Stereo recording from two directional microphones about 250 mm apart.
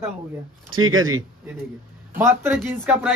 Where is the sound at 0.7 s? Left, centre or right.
Right.